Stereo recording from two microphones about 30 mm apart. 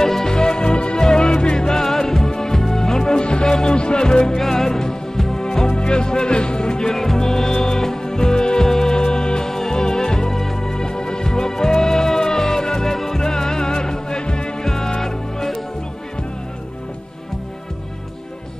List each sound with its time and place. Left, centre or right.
0.0 s music: centre
0.3 s music: left
1.7 s music: centre
4.4 s music: centre; by 6.9 s left
6.9 s music: centre
10.3 s music: centre
10.6 s music: left
12.9 s music: centre; by 14.5 s left
14.6 s music: centre